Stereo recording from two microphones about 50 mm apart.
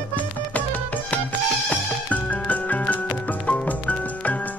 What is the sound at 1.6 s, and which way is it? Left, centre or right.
Music, left.